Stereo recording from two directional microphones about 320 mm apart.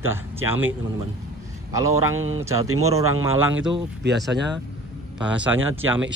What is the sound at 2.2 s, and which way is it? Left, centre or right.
Speech, right.